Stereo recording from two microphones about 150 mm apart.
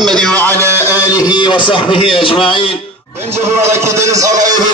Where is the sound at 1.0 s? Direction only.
25° left (ahead or behind).